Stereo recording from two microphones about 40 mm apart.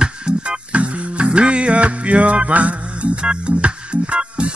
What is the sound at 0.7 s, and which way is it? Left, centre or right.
Music, right.